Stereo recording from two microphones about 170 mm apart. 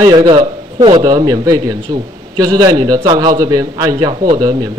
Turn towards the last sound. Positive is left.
turn(degrees=-25)  # may be behind; listen again after turning